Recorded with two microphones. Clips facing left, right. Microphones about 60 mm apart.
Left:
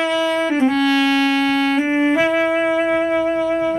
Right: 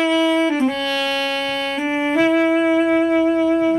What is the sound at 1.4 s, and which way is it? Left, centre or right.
Music, left.